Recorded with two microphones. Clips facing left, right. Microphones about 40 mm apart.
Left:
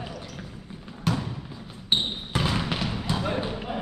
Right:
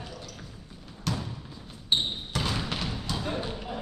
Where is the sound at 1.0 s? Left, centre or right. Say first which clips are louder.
Left 5 dB; left.